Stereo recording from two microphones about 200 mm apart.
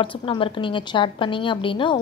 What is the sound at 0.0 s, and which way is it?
A woman's voice, 25° left (ahead or behind).